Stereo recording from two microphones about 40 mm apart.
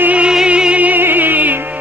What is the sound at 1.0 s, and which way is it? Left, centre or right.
Music, right.